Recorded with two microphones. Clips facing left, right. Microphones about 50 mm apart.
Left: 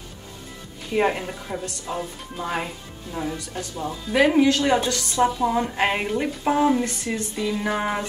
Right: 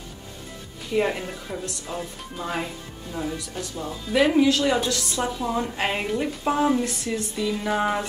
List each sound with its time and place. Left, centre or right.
0.9 s a woman's voice: centre